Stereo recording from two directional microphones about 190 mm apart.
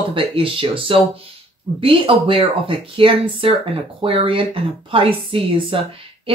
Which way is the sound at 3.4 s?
30° right (ahead or behind).